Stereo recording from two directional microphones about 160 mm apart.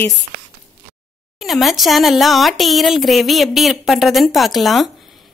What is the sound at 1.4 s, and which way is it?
A woman's voice, centre (ahead or behind).